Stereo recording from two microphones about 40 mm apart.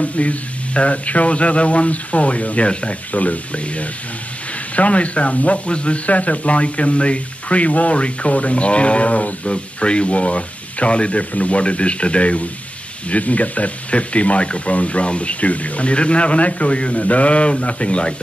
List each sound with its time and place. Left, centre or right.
0.0 s speech: left